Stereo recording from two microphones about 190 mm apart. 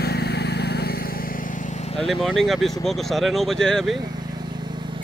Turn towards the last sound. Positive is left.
turn(degrees=0)  # may be behind; listen again after turning